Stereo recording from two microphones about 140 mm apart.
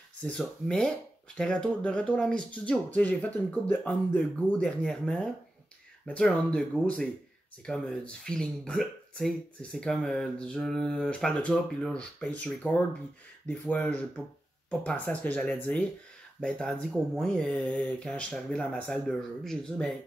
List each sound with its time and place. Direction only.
0.3 s speech: 5° left (ahead or behind)